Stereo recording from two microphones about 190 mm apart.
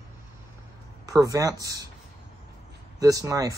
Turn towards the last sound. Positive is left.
turn(degrees=-15)  # may be behind; listen again after turning